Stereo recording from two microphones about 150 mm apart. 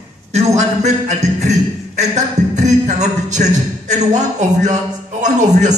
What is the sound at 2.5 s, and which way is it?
A man's voice, 50° right (ahead or behind).